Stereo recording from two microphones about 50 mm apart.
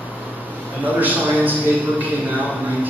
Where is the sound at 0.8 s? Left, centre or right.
Right.